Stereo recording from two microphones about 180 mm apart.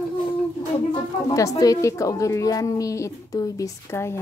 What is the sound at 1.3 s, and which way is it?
A woman's voice, 20° left (ahead or behind).